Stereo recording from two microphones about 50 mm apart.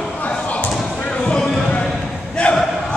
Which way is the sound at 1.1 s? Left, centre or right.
Left.